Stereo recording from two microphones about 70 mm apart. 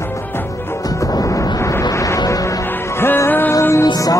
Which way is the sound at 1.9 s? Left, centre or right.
Left.